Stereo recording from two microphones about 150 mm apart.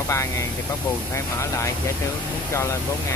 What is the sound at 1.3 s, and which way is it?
Speech, 20° left (ahead or behind).